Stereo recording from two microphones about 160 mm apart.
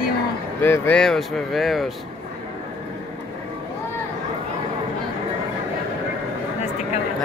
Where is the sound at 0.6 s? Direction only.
10° left (ahead or behind).